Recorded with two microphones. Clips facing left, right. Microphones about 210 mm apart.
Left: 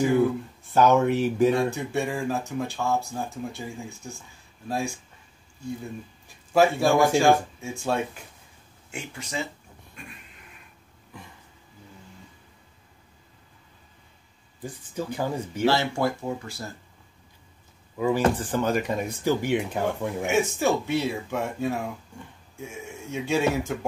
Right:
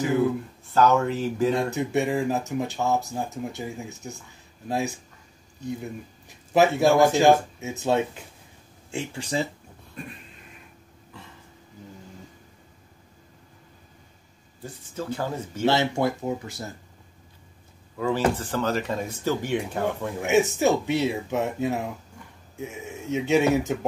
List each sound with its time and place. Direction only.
0.7 s speech: 15° left (ahead or behind)
1.8 s a man's voice: 20° right (ahead or behind)
10.0 s neigh: 35° right (ahead or behind)
15.0 s speech: 15° left (ahead or behind)
15.6 s speech: 20° right (ahead or behind)
17.9 s speech: 15° left (ahead or behind)
20.2 s speech: 20° right (ahead or behind)